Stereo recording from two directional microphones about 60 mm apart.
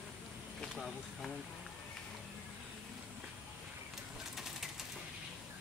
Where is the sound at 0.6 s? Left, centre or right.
Centre.